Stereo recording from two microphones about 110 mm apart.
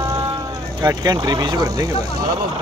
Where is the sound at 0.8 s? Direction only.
35° right (ahead or behind).